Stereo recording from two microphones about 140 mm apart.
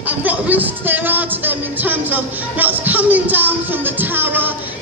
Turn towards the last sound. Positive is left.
turn(degrees=-15)  # may be behind; listen again after turning